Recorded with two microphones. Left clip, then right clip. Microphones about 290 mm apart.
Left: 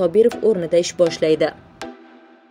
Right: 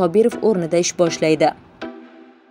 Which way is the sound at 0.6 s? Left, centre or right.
Right.